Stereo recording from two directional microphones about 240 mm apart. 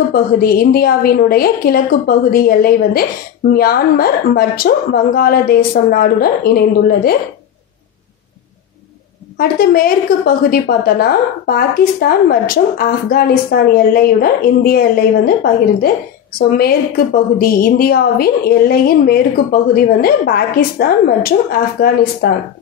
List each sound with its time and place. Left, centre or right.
0.1 s a woman's voice: left
9.4 s a woman's voice: left